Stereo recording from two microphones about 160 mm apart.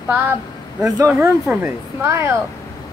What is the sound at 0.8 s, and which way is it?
A woman's voice, 20° right (ahead or behind).